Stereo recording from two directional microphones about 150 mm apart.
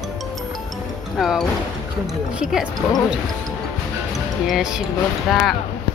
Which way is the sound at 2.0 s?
5° right (ahead or behind).